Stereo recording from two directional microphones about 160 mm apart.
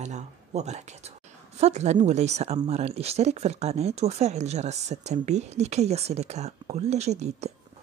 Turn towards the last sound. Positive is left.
turn(degrees=-45)  # may be behind; listen again after turning